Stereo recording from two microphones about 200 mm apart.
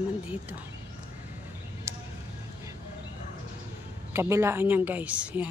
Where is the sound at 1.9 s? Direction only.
15° right (ahead or behind).